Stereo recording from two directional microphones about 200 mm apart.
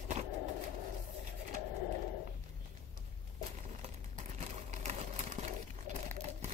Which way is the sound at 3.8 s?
35° right (ahead or behind).